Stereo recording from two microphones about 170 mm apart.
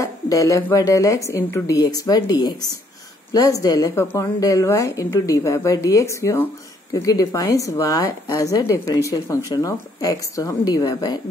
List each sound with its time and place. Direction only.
0.0 s a woman's voice: 20° left (ahead or behind)